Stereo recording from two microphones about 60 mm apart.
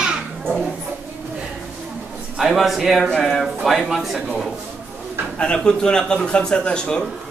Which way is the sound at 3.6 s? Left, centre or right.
Centre.